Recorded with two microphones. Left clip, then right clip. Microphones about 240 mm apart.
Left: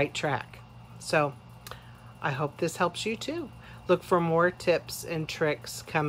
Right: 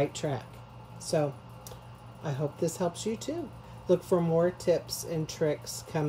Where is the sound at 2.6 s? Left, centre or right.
Centre.